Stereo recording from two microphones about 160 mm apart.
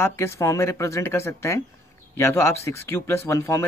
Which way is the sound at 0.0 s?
15° left (ahead or behind).